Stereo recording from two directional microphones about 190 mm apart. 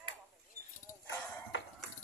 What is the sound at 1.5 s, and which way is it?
Music, 70° left (ahead or behind).